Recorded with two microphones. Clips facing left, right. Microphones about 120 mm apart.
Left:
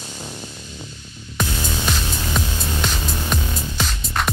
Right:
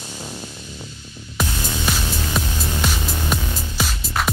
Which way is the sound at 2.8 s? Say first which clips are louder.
Right 1 dB; 5° right (ahead or behind).